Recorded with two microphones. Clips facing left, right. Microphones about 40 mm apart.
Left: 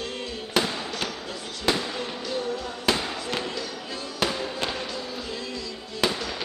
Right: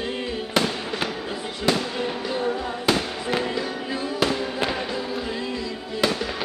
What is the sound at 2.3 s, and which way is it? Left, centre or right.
Music, right.